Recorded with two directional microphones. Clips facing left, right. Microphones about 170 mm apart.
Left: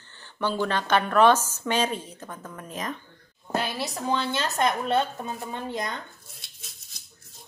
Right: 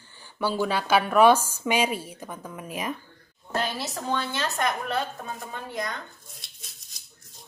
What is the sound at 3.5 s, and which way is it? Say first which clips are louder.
A woman's voice: left 1 dB; 15° left (ahead or behind).